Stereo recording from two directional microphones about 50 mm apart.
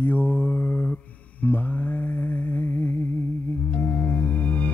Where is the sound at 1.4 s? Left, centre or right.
Left.